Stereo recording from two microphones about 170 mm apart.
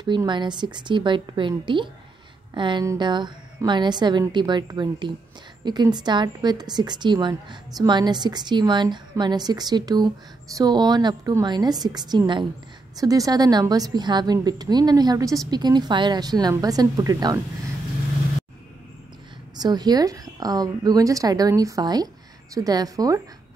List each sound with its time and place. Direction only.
0.0 s a woman's voice: 25° right (ahead or behind)
19.5 s a woman's voice: 25° right (ahead or behind)